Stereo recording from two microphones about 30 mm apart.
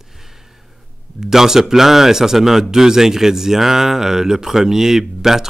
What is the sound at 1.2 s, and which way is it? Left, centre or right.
A man's voice, centre.